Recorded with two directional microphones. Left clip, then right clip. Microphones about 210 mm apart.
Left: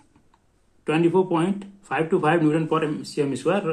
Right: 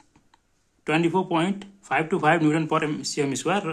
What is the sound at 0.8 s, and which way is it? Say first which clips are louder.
Speech: left 3 dB; 30° right (ahead or behind).